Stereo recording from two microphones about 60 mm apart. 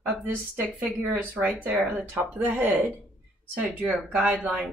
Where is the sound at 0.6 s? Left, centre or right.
Right.